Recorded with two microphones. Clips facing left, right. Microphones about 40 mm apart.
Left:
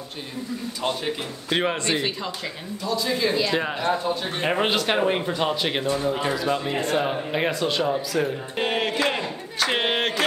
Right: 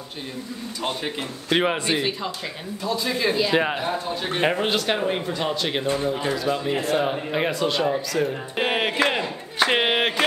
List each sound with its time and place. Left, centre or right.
1.0 s speech: centre
2.8 s speech: right
3.1 s speech: centre
3.5 s speech: right
4.6 s speech: centre
8.5 s speech: centre
9.1 s a sound: centre